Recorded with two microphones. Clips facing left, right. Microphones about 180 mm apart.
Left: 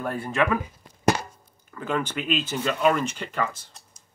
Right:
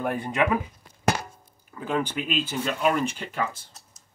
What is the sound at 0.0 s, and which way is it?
Speech, 15° right (ahead or behind).